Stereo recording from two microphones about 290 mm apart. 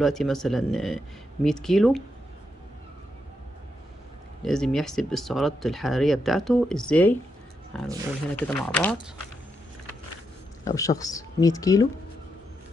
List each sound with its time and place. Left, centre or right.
0.0 s speech: centre
4.4 s speech: centre
10.6 s speech: centre